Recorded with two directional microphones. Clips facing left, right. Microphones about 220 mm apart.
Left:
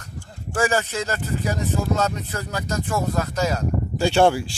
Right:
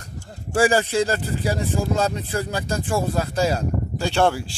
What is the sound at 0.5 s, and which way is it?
Speech, 35° right (ahead or behind).